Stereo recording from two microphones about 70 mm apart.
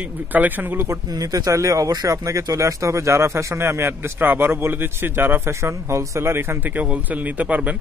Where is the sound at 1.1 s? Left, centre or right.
Right.